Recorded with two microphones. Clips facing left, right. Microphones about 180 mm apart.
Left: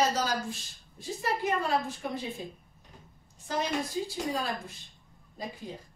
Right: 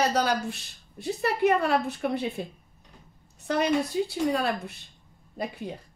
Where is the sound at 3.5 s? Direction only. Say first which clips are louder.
Right 7 dB; 65° right (ahead or behind).